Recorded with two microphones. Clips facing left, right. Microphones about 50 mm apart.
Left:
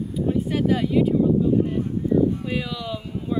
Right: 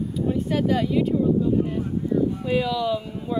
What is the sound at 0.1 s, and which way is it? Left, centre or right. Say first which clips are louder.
Speech: left 2 dB; centre.